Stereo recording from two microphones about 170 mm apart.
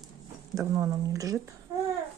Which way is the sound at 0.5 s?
20° right (ahead or behind).